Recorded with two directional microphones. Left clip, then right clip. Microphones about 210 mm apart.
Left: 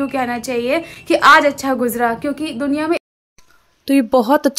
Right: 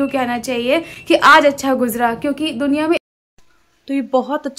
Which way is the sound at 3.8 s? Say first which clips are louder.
Left 4 dB; 25° left (ahead or behind).